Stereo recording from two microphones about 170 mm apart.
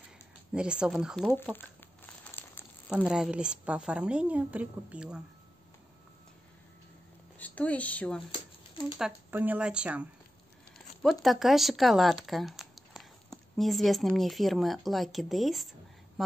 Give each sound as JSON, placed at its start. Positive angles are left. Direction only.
{"t": 0.5, "sound": "speech", "side_deg": -5}
{"t": 1.5, "sound": "crumpling", "side_deg": 10}
{"t": 3.1, "sound": "a woman's voice", "side_deg": -5}
{"t": 7.3, "sound": "speech", "side_deg": 10}
{"t": 8.3, "sound": "a sound", "side_deg": 30}
{"t": 8.9, "sound": "a woman's voice", "side_deg": -5}